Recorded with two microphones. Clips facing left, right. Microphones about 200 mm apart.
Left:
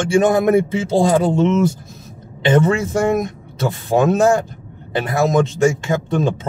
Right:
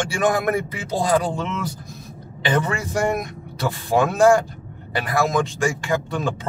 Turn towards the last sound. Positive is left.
turn(degrees=20)  # may be behind; listen again after turning